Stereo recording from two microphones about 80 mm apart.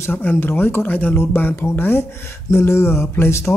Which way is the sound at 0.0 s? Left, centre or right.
Left.